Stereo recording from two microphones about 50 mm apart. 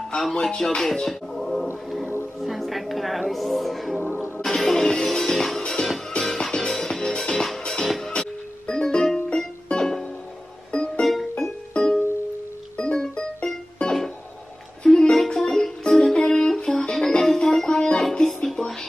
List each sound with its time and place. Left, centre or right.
0.1 s speech: centre
2.4 s music: centre; by 11.1 s left
11.1 s music: centre